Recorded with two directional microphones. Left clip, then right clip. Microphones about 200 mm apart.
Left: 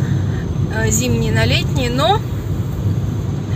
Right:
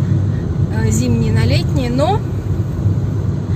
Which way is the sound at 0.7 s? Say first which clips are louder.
Left 2 dB; 10° right (ahead or behind).